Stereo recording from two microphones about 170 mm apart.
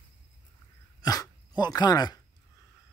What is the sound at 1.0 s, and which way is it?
Dog, 20° left (ahead or behind).